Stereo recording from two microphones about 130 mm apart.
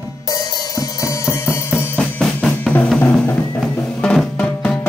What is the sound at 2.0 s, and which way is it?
Drum, 5° left (ahead or behind).